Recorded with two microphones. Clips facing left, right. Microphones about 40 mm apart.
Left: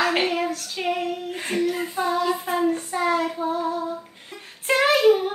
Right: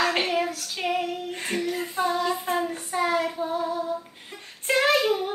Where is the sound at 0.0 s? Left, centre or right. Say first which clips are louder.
Left 2 dB; centre.